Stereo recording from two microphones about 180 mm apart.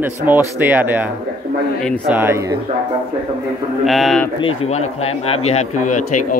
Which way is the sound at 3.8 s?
Centre (ahead or behind).